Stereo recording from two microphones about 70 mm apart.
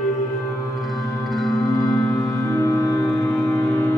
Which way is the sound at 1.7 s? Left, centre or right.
Left.